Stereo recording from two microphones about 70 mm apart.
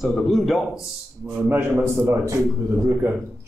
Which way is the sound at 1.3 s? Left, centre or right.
Right.